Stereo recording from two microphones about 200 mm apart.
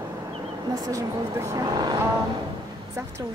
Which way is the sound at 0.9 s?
15° right (ahead or behind).